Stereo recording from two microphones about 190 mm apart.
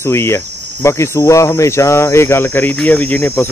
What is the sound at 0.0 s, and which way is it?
Speech, 15° left (ahead or behind).